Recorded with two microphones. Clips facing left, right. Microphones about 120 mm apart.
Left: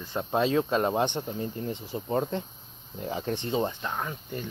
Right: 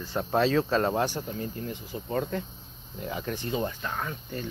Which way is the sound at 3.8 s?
15° left (ahead or behind).